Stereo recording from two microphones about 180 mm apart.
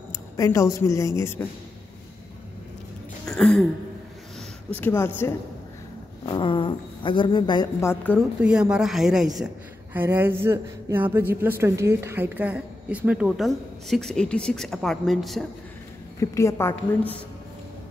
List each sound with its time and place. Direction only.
0.1 s speech: 15° left (ahead or behind)
3.3 s a sound: 5° left (ahead or behind)
4.7 s a woman's voice: 10° left (ahead or behind)
6.2 s a woman's voice: 25° left (ahead or behind)
7.9 s a woman's voice: 10° left (ahead or behind)
8.4 s a woman's voice: 5° right (ahead or behind)
16.2 s a woman's voice: 15° left (ahead or behind)